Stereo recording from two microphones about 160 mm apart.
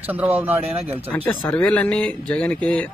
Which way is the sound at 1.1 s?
10° left (ahead or behind).